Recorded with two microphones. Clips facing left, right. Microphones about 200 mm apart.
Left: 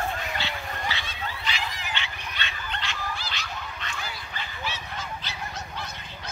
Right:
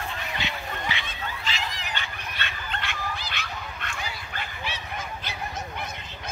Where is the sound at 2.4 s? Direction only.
55° right (ahead or behind).